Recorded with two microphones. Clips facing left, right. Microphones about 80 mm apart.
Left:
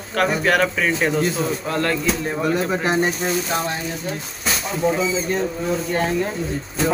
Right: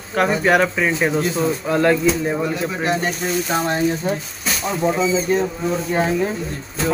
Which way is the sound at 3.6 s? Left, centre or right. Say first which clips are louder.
Right 7 dB; right.